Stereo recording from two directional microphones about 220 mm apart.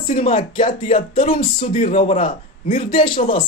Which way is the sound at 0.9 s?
35° left (ahead or behind).